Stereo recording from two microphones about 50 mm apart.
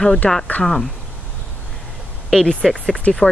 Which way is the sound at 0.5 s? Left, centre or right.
Left.